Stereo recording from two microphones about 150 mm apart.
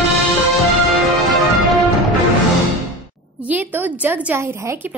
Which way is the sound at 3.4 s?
10° right (ahead or behind).